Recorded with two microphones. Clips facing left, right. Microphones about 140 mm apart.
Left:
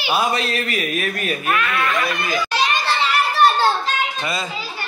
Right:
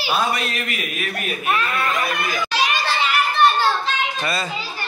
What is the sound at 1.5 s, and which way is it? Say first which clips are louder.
Speech: even; 35° right (ahead or behind).